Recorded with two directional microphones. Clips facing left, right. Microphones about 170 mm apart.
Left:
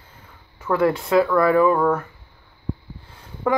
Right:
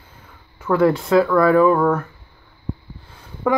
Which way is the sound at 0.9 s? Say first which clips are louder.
Right 2 dB; 20° left (ahead or behind).